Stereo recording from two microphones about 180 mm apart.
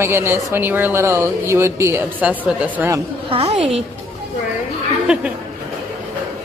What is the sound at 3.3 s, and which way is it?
Speech, 35° right (ahead or behind).